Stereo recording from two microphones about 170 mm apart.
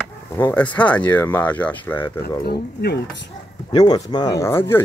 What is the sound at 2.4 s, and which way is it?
Speech, 70° left (ahead or behind).